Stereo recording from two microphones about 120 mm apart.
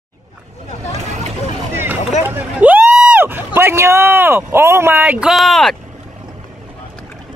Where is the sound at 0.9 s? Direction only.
70° right (ahead or behind).